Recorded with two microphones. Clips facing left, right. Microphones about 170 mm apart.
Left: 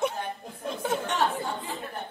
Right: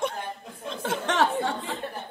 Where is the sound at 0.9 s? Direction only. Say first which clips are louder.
Right 3 dB; 90° right.